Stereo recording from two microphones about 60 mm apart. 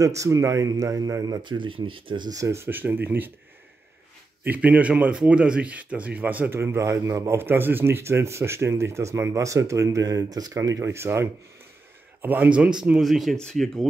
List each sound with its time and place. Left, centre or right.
0.0 s speech: right
2.4 s speech: right
2.7 s speech: right
4.5 s speech: right
6.5 s speech: right
7.3 s speech: right
10.8 s speech: right
12.2 s speech: right
12.5 s a man's voice: centre
13.0 s speech: centre